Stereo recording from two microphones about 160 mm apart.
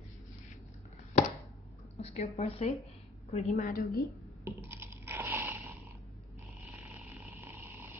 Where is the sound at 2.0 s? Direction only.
40° left (ahead or behind).